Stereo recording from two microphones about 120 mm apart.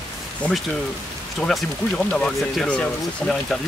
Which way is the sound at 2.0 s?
5° left (ahead or behind).